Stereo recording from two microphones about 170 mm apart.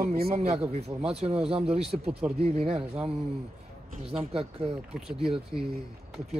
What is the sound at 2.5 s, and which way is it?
Speech, 35° right (ahead or behind).